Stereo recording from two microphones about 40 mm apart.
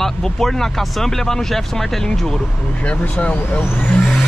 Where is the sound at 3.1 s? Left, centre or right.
Left.